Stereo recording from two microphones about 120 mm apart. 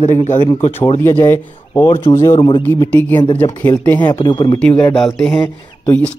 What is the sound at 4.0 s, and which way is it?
Speech, 35° left (ahead or behind).